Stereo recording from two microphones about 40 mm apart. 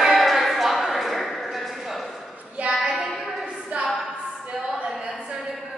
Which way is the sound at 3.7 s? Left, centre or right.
Right.